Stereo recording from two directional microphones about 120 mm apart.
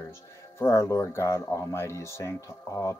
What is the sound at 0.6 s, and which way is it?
Speech, 25° left (ahead or behind).